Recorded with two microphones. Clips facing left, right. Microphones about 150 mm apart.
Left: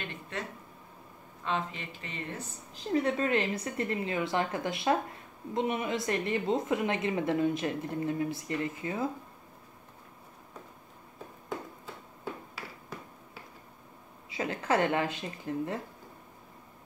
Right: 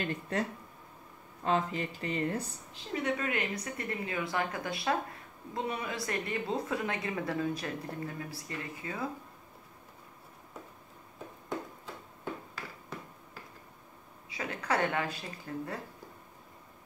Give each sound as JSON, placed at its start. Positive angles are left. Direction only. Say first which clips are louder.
{"t": 0.0, "sound": "speech", "louder": "right 6 dB", "side_deg": -40}
{"t": 2.7, "sound": "a woman's voice", "louder": "left 5 dB", "side_deg": 35}
{"t": 14.3, "sound": "a woman's voice", "louder": "left 4 dB", "side_deg": 30}